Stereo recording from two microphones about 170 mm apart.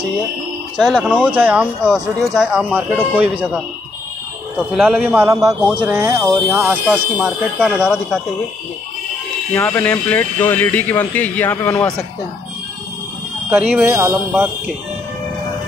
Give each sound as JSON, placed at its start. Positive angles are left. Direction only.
{"t": 0.7, "sound": "speech", "side_deg": 0}
{"t": 4.7, "sound": "speech", "side_deg": -5}
{"t": 6.6, "sound": "speech", "side_deg": -5}
{"t": 9.5, "sound": "speech", "side_deg": 10}
{"t": 13.5, "sound": "speech", "side_deg": -10}